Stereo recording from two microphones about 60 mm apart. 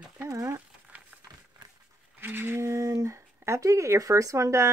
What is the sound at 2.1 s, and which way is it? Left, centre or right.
Whale vocalization, right.